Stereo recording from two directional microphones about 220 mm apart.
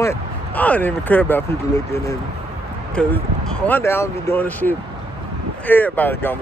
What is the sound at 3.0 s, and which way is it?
Speech, 5° left (ahead or behind).